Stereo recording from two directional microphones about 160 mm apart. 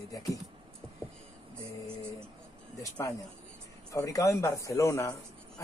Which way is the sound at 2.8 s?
20° left (ahead or behind).